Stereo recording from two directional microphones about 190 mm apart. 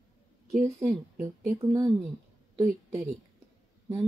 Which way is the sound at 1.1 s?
15° right (ahead or behind).